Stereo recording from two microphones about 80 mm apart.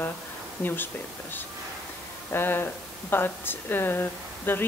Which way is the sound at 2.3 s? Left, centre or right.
Left.